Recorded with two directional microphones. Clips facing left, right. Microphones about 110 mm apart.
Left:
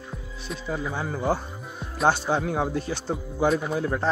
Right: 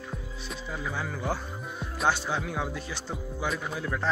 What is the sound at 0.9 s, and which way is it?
Speech, 35° left (ahead or behind).